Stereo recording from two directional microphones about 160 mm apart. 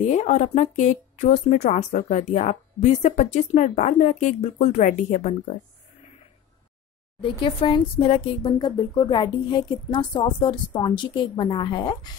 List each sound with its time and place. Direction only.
0.1 s speech: 45° left (ahead or behind)
7.2 s speech: 30° left (ahead or behind)